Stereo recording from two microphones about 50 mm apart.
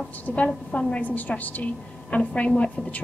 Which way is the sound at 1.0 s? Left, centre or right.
Left.